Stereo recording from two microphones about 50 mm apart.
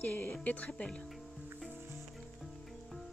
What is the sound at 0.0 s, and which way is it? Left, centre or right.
Speech, left.